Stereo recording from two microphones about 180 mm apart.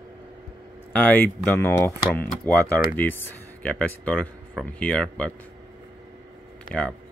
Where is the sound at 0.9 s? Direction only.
10° left (ahead or behind).